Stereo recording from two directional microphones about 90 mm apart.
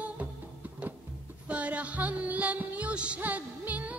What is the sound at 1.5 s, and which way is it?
Music, 15° right (ahead or behind).